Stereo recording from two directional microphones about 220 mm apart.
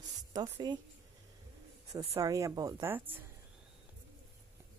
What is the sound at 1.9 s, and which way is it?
A woman's voice, 15° right (ahead or behind).